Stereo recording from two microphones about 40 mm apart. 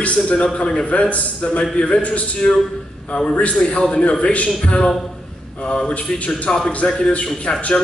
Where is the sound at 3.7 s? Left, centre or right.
Left.